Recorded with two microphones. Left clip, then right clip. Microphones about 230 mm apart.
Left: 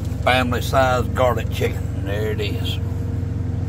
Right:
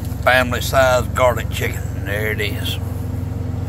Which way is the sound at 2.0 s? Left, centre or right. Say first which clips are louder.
Right 3 dB; right.